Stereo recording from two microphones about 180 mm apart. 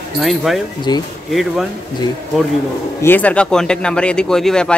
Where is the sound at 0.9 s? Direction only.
25° left (ahead or behind).